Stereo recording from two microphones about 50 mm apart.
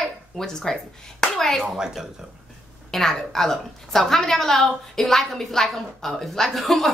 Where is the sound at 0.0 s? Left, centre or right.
Centre.